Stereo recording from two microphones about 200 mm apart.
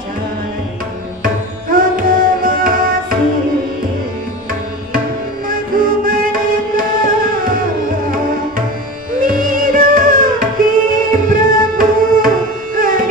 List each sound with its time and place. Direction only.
1.7 s music: 45° right (ahead or behind)
5.5 s music: 45° right (ahead or behind)
9.2 s music: 45° right (ahead or behind)